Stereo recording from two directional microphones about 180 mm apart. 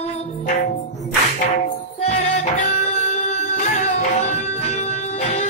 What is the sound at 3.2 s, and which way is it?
Music, 40° left (ahead or behind).